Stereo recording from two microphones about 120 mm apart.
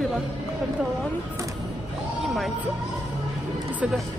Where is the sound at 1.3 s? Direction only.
30° right (ahead or behind).